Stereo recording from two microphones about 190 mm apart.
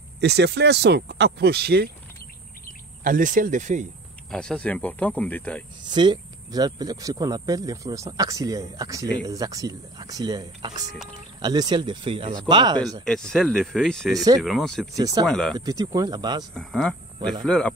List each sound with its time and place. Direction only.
0.2 s speech: 60° right (ahead or behind)
3.0 s speech: 45° right (ahead or behind)
4.3 s speech: 5° left (ahead or behind)
5.9 s speech: 25° right (ahead or behind)
13.0 s speech: 5° left (ahead or behind)
15.0 s speech: 20° right (ahead or behind)
15.2 s speech: 5° left (ahead or behind)
15.5 s speech: 20° right (ahead or behind)
16.5 s speech: centre (ahead or behind)